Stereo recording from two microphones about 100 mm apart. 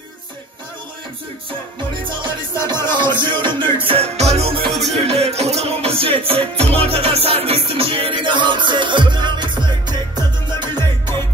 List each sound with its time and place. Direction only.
2.8 s music: 50° right (ahead or behind); by 4.6 s 90° right
4.6 s music: centre (ahead or behind)
4.9 s music: 90° right; by 10.8 s 45° right (ahead or behind)
10.8 s music: 25° left (ahead or behind)